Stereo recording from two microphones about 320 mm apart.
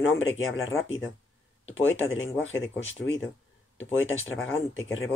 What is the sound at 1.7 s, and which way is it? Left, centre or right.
Speech, left.